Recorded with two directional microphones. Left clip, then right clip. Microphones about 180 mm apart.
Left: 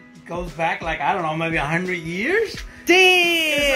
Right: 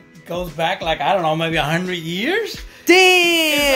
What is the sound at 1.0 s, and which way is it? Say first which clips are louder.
Speech: right 4 dB; 40° right (ahead or behind).